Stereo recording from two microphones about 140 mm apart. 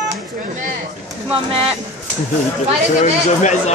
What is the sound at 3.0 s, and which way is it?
Speech, 60° left (ahead or behind).